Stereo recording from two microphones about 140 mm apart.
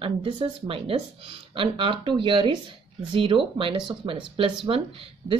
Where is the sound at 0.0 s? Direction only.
40° right (ahead or behind).